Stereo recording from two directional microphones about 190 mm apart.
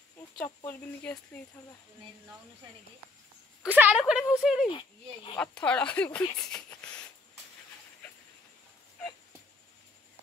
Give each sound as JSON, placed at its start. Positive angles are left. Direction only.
{"t": 0.7, "sound": "speech", "side_deg": 5}
{"t": 3.6, "sound": "a sound", "side_deg": -10}
{"t": 4.0, "sound": "a woman's voice", "side_deg": -5}
{"t": 4.6, "sound": "speech", "side_deg": 25}
{"t": 5.4, "sound": "speech", "side_deg": 5}